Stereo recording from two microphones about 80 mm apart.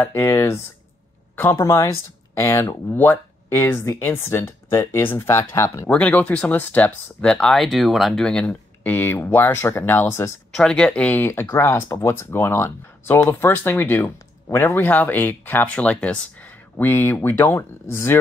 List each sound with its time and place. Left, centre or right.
0.0 s speech: left
1.3 s speech: left
1.6 s speech: left
5.9 s speech: centre
8.3 s speech: centre; by 10.3 s left
10.5 s speech: centre
11.1 s speech: left